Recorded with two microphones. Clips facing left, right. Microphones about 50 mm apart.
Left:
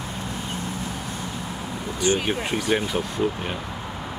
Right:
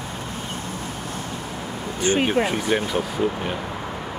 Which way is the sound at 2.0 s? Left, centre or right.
Right.